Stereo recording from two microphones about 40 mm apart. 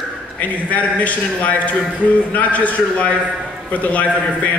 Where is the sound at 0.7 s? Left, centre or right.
Left.